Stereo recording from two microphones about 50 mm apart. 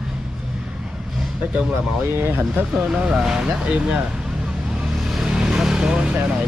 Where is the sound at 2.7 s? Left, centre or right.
Centre.